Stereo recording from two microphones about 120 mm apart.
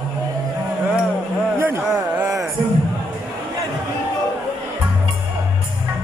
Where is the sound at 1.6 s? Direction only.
15° right (ahead or behind).